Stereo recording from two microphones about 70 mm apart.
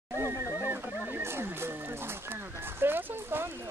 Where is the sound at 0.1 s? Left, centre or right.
Right.